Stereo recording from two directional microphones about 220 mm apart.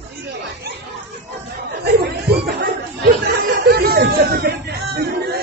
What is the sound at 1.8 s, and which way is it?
Chatter, 45° right (ahead or behind).